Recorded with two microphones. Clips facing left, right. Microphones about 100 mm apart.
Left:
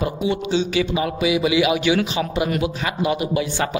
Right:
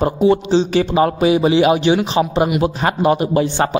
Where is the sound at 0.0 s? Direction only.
40° right (ahead or behind).